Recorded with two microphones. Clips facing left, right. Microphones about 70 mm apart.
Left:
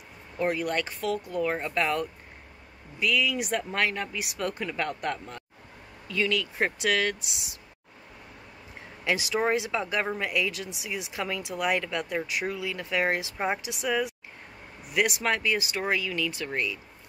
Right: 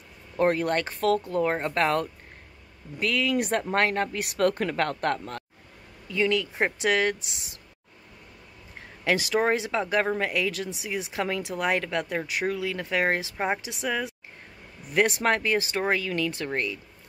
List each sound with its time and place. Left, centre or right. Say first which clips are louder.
0.4 s speech: right 4 dB; right
6.0 s speech: right 3 dB; right
9.0 s speech: right 3 dB; right